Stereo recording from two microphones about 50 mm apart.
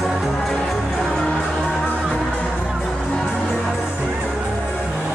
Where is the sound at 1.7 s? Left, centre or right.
Centre.